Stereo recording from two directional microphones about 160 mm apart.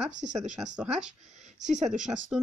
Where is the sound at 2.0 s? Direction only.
5° right (ahead or behind).